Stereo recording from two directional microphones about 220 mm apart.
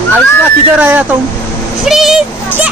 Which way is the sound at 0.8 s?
5° right (ahead or behind).